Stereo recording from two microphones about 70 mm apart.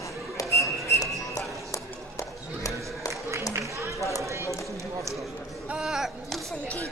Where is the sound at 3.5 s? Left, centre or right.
Right.